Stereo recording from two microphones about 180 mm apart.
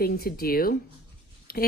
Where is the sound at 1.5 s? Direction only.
55° left (ahead or behind).